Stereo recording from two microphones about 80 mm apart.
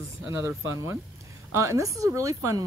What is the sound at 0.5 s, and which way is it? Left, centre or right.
Speech, right.